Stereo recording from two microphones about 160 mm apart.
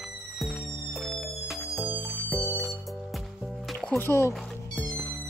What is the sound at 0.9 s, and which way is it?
Music, centre (ahead or behind).